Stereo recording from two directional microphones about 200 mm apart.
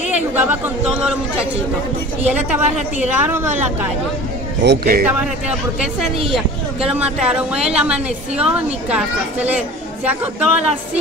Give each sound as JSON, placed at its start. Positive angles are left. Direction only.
{"t": 0.1, "sound": "speech", "side_deg": -10}
{"t": 4.6, "sound": "speech", "side_deg": -50}
{"t": 6.3, "sound": "speech", "side_deg": -5}